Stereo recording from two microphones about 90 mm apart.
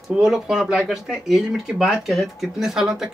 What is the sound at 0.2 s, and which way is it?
Speech, 5° right (ahead or behind).